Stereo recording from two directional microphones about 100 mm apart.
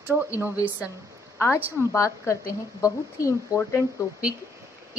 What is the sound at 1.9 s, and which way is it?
A woman's voice, 30° left (ahead or behind).